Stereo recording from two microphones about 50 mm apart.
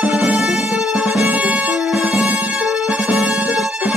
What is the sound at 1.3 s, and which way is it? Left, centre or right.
Music, right.